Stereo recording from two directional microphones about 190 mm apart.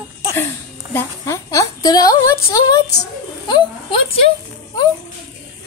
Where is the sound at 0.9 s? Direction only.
15° left (ahead or behind).